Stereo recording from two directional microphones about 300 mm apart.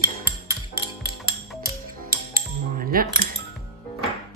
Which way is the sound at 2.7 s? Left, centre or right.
Right.